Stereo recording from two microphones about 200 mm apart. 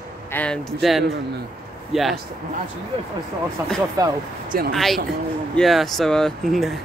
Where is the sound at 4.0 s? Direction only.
15° right (ahead or behind).